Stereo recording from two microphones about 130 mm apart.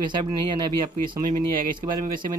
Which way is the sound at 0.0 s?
35° right (ahead or behind).